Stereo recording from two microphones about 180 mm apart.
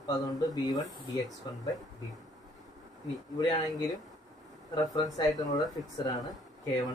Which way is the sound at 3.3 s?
20° left (ahead or behind).